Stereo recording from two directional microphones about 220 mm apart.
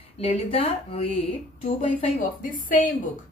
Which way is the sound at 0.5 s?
25° left (ahead or behind).